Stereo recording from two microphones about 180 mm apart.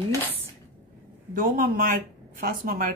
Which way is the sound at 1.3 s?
50° right (ahead or behind).